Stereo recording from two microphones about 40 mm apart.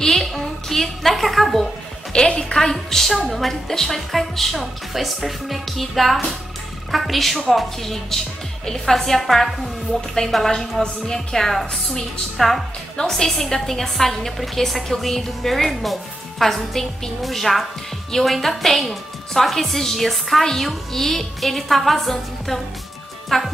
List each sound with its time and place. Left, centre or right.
0.0 s a sound: centre
2.1 s a woman's voice: left
2.7 s a woman's voice: centre